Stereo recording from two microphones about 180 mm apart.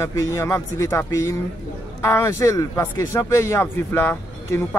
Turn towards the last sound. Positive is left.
turn(degrees=10)  # may be behind; listen again after turning